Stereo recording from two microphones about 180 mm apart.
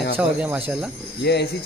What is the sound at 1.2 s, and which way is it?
Speech, 65° left (ahead or behind).